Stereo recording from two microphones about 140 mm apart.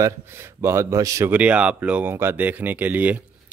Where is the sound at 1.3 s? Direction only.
10° right (ahead or behind).